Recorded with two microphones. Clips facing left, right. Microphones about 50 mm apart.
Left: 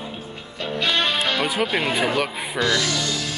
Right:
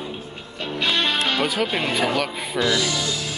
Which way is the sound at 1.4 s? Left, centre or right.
Centre.